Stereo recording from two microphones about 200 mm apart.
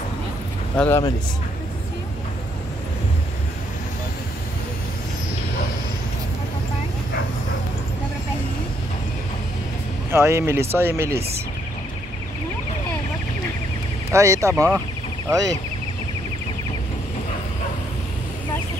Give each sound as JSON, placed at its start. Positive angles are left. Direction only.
{"t": 0.7, "sound": "speech", "side_deg": 10}
{"t": 10.1, "sound": "speech", "side_deg": -15}
{"t": 14.1, "sound": "speech", "side_deg": -15}